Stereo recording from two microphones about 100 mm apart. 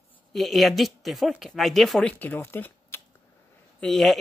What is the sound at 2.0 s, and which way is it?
Speech, 15° left (ahead or behind).